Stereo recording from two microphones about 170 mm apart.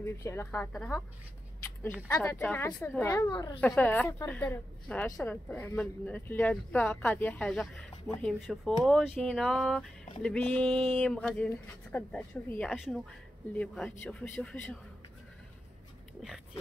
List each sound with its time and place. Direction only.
0.0 s a woman's voice: 15° left (ahead or behind)
2.0 s a woman's voice: 15° left (ahead or behind)
3.6 s a woman's voice: 5° left (ahead or behind)